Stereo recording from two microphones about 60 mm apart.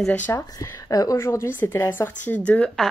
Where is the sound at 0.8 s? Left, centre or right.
Left.